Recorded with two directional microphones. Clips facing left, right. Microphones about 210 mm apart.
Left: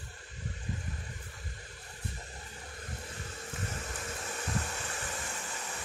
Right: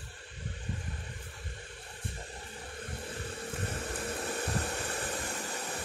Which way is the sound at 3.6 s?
35° right (ahead or behind).